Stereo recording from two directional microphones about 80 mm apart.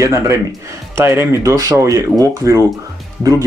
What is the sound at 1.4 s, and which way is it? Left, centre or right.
Speech, right.